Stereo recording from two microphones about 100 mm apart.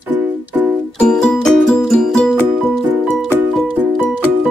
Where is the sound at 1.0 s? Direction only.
10° left (ahead or behind).